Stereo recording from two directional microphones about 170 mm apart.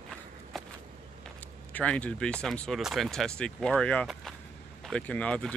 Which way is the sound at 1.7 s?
5° left (ahead or behind).